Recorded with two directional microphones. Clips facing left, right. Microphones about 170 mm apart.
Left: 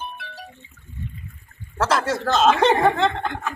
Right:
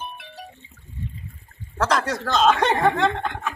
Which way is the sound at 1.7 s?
5° left (ahead or behind).